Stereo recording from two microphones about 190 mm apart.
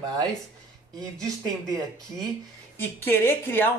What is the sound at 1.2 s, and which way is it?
Speech, 20° right (ahead or behind).